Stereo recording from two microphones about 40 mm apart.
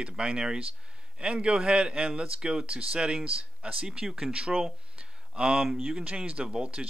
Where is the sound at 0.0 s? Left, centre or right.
Right.